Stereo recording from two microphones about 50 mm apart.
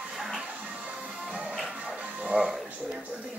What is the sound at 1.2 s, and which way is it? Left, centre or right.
Music, centre.